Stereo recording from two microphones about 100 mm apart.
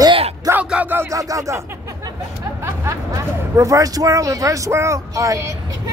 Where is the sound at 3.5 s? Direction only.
30° right (ahead or behind).